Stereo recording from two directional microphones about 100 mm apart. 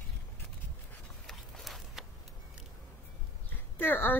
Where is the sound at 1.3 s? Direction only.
Centre (ahead or behind).